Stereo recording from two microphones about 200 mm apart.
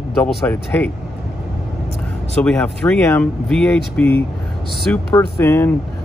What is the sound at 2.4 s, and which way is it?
Speech, 5° left (ahead or behind).